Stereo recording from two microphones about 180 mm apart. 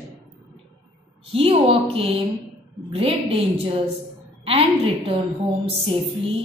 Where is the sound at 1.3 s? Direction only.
35° right (ahead or behind).